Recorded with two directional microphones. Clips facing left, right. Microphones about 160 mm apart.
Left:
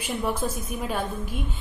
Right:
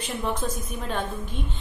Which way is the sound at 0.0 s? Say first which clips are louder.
Left 1 dB; 10° left (ahead or behind).